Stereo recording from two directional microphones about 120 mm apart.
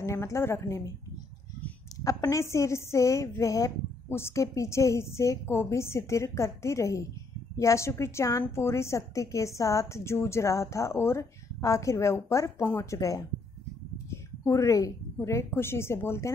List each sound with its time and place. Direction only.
0.0 s a woman's voice: 25° left (ahead or behind)
2.0 s a woman's voice: 30° left (ahead or behind)
14.1 s a sound: 25° left (ahead or behind)
15.2 s a woman's voice: 20° left (ahead or behind)